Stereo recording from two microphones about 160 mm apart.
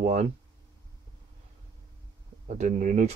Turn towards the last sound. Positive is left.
turn(degrees=-50)  # may be behind; listen again after turning